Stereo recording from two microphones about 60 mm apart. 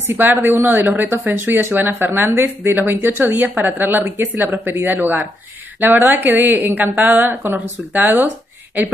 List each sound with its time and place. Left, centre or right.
0.0 s speech: right